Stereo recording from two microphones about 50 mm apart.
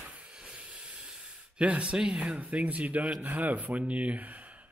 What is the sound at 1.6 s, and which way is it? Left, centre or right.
Speech, right.